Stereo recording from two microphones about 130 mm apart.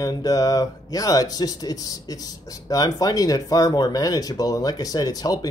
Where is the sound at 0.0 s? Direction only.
30° left (ahead or behind).